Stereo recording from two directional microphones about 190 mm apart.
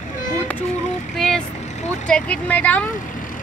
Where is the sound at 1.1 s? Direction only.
5° left (ahead or behind).